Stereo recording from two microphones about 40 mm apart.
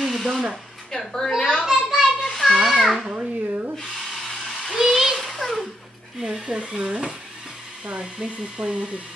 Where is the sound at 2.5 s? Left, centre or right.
Centre.